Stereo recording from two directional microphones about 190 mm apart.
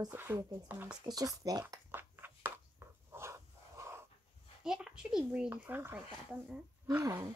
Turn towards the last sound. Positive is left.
turn(degrees=-20)  # may be behind; listen again after turning